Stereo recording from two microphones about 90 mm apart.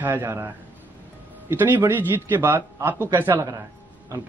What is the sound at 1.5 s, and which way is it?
A man's voice, 25° right (ahead or behind).